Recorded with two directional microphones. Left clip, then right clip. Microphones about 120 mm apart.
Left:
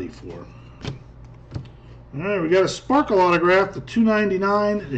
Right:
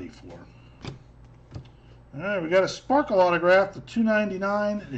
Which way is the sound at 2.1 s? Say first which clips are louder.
Left 3 dB; 25° right (ahead or behind).